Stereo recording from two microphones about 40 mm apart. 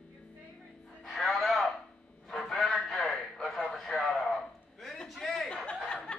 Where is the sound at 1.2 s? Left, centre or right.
Centre.